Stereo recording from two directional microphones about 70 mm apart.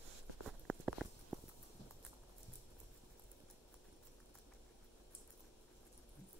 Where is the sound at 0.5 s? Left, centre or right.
Centre.